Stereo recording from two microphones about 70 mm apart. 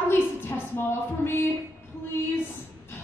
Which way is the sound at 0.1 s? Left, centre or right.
Left.